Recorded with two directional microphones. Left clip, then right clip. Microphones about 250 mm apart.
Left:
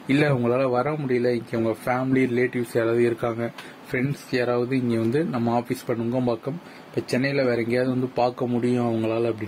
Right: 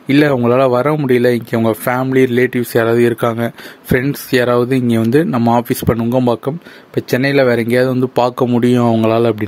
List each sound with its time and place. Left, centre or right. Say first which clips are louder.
0.1 s speech: right 10 dB; right